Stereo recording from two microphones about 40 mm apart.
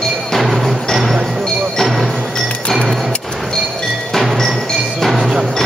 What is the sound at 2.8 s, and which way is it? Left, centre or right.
Music, centre.